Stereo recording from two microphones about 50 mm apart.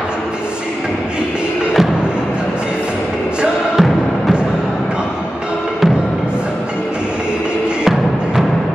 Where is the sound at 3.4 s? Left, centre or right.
Centre.